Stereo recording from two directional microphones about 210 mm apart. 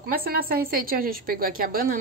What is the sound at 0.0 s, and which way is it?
A woman's voice, 45° right (ahead or behind).